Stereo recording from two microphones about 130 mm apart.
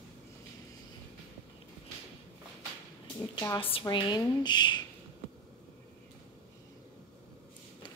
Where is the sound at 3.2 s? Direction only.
35° left (ahead or behind).